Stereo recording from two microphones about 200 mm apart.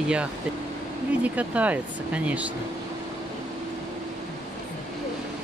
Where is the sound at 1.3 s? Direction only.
5° right (ahead or behind).